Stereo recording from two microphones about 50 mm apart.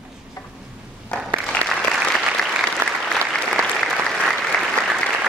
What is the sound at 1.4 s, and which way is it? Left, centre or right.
Applause, centre.